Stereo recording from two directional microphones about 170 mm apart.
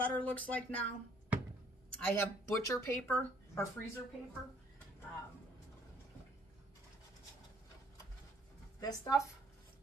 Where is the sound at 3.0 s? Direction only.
10° left (ahead or behind).